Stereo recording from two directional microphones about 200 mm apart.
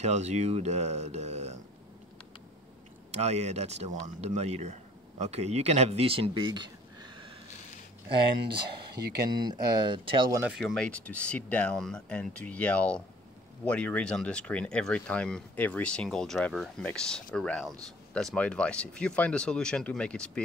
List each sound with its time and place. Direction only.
0.0 s speech: 35° right (ahead or behind)
3.1 s speech: 35° right (ahead or behind)
8.9 s speech: 55° right (ahead or behind)
9.5 s speech: 20° right (ahead or behind)
10.4 s speech: 5° right (ahead or behind)